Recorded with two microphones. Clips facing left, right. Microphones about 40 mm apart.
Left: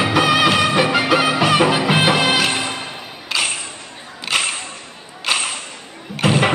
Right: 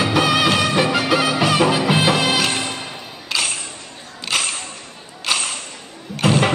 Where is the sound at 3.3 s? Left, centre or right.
Left.